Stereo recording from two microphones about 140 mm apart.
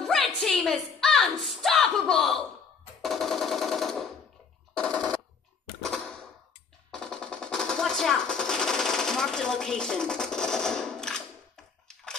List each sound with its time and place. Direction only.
0.0 s a sound: centre (ahead or behind)
3.0 s machine gun: centre (ahead or behind)
6.9 s machine gun: 5° left (ahead or behind)